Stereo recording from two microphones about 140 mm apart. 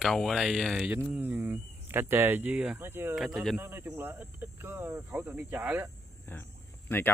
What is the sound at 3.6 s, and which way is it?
Speech, 15° right (ahead or behind).